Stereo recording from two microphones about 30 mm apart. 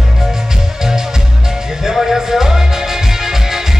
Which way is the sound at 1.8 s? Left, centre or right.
Centre.